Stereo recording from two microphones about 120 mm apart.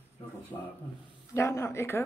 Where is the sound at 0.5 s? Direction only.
30° left (ahead or behind).